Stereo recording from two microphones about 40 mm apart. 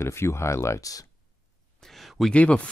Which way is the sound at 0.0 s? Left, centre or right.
Left.